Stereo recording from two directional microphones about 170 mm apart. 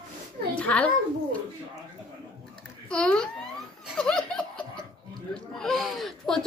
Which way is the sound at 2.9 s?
5° left (ahead or behind).